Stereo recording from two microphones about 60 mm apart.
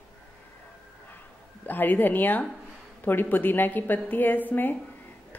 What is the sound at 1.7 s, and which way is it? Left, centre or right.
A woman's voice, left.